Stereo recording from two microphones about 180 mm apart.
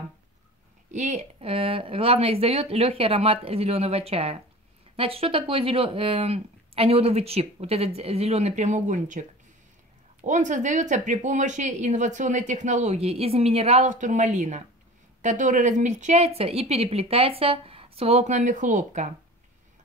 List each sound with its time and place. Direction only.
0.9 s speech: 40° right (ahead or behind)
10.2 s speech: 45° right (ahead or behind)